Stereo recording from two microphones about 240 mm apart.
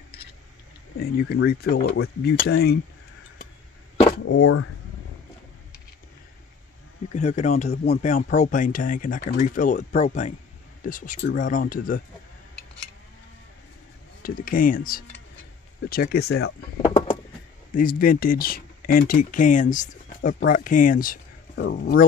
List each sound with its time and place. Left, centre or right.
0.9 s speech: left
4.2 s speech: left
7.1 s speech: left
14.2 s speech: left
16.3 s speech: left
16.8 s a sound: left
17.7 s speech: left